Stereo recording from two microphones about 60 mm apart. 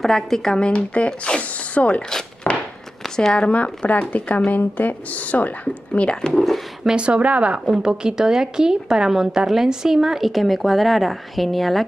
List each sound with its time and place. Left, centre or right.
0.0 s speech: centre
2.4 s a sound: left
3.2 s speech: centre
5.9 s speech: centre
6.8 s a woman's voice: centre